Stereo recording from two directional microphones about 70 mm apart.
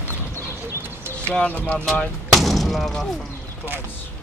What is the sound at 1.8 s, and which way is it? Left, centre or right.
Speech, centre.